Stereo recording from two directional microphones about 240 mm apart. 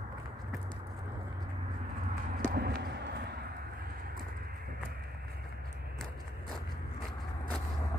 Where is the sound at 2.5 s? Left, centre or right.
Right.